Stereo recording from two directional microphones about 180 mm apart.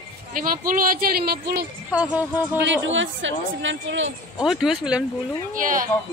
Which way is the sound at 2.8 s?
90° right.